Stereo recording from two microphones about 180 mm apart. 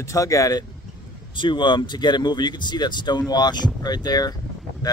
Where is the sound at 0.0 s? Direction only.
15° left (ahead or behind).